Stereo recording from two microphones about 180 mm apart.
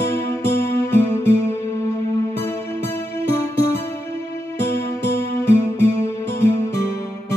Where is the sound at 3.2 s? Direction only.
15° left (ahead or behind).